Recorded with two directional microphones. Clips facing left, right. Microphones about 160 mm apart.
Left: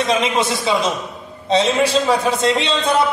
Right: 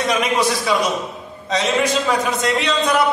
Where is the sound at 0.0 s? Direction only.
25° left (ahead or behind).